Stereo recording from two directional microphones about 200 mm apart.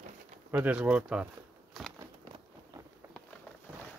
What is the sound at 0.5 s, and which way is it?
Speech, 5° right (ahead or behind).